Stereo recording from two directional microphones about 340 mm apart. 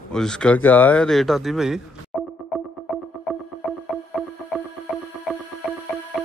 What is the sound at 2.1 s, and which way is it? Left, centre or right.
Music, centre.